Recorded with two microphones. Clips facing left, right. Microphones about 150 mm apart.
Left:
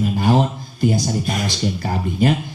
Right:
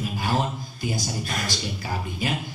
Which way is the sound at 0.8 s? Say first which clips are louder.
Left 11 dB; 50° left (ahead or behind).